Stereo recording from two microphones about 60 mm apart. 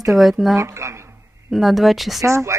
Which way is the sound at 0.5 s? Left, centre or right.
Right.